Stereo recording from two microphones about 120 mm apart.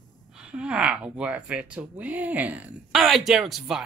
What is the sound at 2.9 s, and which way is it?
Speech, centre (ahead or behind).